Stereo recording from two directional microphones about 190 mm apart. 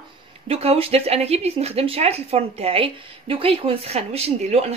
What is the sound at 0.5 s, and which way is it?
Speech, 30° right (ahead or behind).